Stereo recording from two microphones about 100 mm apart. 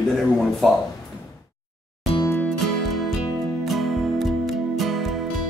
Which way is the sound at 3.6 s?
Centre (ahead or behind).